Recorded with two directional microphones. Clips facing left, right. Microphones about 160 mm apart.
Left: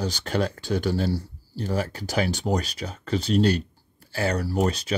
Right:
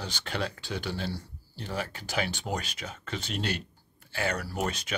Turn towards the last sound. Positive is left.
turn(degrees=35)  # may be behind; listen again after turning